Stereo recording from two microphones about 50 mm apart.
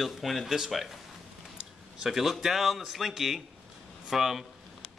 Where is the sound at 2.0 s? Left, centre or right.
Centre.